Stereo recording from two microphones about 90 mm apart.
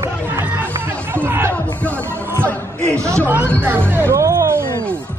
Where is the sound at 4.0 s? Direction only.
30° right (ahead or behind).